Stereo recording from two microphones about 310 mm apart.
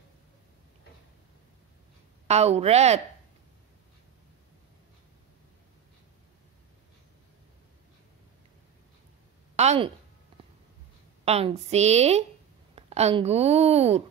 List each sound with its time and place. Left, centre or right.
2.2 s a woman's voice: centre
9.6 s a woman's voice: right
11.2 s a woman's voice: centre